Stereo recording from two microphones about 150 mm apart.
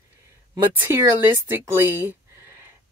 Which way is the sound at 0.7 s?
15° right (ahead or behind).